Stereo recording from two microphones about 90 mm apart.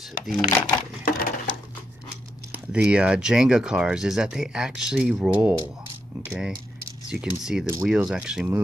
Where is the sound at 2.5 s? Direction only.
10° right (ahead or behind).